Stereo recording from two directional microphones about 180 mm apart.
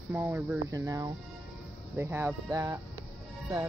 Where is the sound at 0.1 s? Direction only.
10° right (ahead or behind).